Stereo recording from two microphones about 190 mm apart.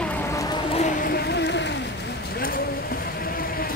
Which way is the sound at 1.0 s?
55° left (ahead or behind).